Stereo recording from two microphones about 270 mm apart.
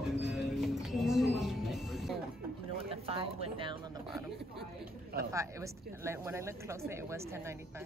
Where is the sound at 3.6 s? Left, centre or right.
Centre.